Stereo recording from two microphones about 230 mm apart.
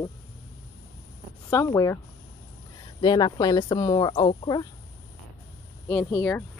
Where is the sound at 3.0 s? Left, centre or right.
Centre.